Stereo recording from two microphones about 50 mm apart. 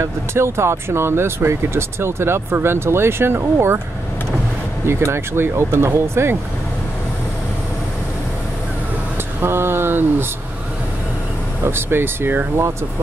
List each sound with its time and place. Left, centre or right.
0.0 s speech: right
4.8 s speech: right
9.4 s speech: right
11.6 s speech: right